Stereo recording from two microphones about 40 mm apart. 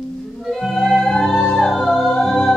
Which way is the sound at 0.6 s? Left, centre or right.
Centre.